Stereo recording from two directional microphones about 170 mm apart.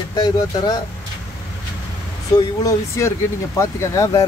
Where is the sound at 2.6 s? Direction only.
20° left (ahead or behind).